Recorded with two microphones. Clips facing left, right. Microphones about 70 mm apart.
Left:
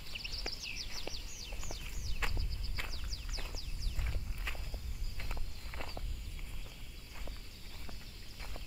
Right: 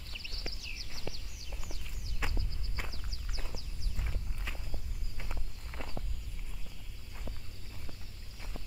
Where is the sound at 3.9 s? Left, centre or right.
Centre.